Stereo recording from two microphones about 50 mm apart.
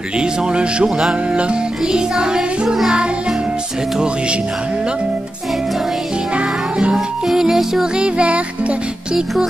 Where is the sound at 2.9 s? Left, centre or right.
Right.